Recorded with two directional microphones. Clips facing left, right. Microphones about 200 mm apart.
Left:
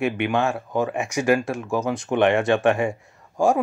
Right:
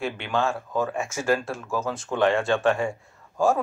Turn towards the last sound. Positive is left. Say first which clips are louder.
# left 2 dB
turn(degrees=15)  # may be behind; listen again after turning